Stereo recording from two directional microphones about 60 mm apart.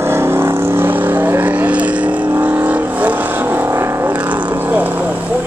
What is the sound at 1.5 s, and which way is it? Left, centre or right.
Vehicle, right.